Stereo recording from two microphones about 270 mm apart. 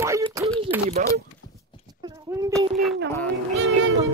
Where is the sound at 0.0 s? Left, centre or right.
Centre.